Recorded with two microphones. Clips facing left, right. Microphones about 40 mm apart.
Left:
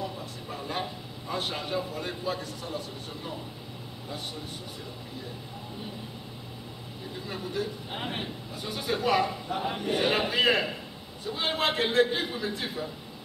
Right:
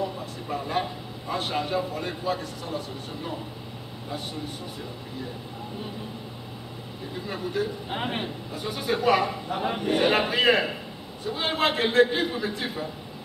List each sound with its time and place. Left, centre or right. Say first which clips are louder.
0.0 s a sound: right 5 dB; centre
7.2 s a man's voice: right 4 dB; centre
7.9 s speech: right 5 dB; right
8.6 s a man's voice: right 4 dB; centre